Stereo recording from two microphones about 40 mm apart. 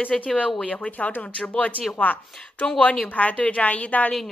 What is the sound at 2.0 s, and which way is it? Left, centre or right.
Speech, left.